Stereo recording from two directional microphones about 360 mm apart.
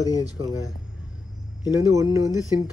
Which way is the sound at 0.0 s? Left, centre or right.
Centre.